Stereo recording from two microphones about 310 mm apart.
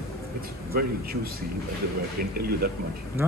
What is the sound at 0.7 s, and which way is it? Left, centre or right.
Speech, right.